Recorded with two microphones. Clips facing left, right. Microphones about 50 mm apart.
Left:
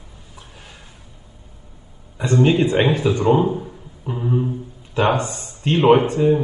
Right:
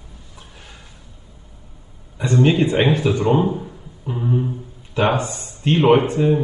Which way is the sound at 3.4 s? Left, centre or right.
Centre.